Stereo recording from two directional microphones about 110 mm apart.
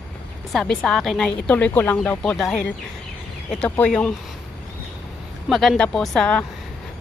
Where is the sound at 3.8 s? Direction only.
10° left (ahead or behind).